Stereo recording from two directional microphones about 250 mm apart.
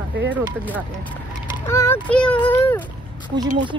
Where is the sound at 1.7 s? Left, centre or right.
Centre.